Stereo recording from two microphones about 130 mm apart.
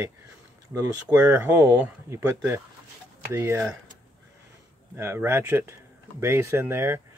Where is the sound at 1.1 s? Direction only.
10° right (ahead or behind).